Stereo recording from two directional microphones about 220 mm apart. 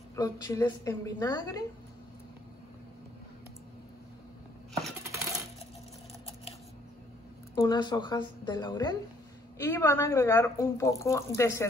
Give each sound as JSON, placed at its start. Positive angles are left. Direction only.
{"t": 0.1, "sound": "speech", "side_deg": 15}
{"t": 7.5, "sound": "a woman's voice", "side_deg": 15}